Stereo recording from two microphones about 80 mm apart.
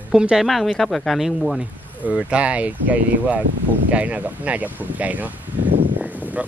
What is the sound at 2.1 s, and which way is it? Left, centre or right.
Speech, centre.